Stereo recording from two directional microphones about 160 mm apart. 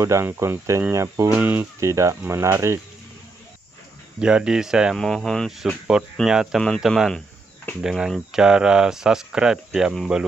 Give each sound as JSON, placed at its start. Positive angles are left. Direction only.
{"t": 0.0, "sound": "speech", "side_deg": -15}
{"t": 4.2, "sound": "speech", "side_deg": -5}